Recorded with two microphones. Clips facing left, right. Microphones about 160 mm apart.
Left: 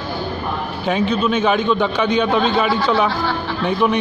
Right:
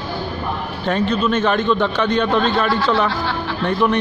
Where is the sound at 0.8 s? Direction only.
5° left (ahead or behind).